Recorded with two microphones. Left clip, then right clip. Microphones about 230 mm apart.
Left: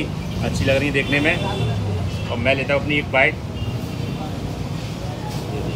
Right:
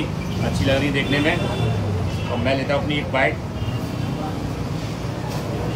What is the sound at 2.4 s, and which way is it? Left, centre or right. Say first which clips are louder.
Speech: left 3 dB; centre.